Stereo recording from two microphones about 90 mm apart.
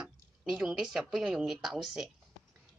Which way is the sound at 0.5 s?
10° right (ahead or behind).